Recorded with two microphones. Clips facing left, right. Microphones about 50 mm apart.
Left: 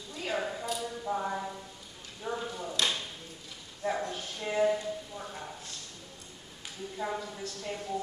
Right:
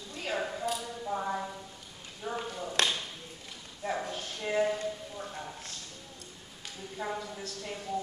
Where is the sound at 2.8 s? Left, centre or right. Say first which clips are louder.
Right 2 dB; right.